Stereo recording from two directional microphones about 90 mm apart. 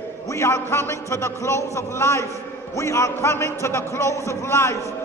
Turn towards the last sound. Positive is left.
turn(degrees=30)  # may be behind; listen again after turning